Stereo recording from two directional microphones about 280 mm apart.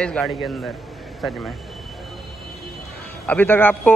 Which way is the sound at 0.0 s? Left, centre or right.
Centre.